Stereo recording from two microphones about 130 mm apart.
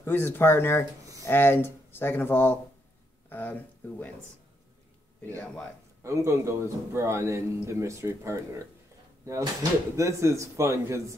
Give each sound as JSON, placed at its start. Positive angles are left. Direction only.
{"t": 0.0, "sound": "speech", "side_deg": 15}
{"t": 6.0, "sound": "a man's voice", "side_deg": -25}